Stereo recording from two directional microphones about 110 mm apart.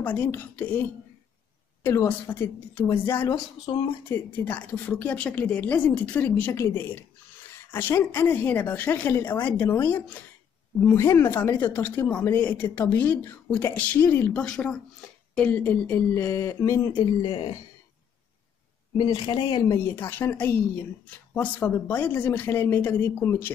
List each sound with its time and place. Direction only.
0.0 s speech: 15° left (ahead or behind)
3.7 s speech: 50° left (ahead or behind)
4.1 s speech: 15° left (ahead or behind)
14.4 s speech: 5° left (ahead or behind); by 17.6 s 50° left (ahead or behind)
18.9 s speech: 50° left (ahead or behind)
19.8 s speech: 20° left (ahead or behind)